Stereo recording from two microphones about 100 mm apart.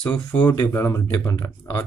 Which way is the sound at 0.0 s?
15° left (ahead or behind).